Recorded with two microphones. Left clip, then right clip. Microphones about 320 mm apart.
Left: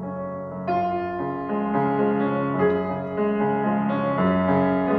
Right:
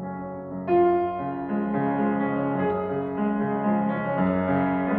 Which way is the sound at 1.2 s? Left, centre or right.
Centre.